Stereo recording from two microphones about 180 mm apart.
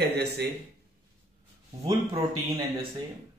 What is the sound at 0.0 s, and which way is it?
Speech, 65° right (ahead or behind).